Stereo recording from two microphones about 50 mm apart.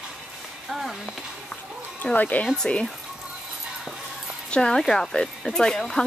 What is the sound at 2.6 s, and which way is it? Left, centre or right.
Speech, left.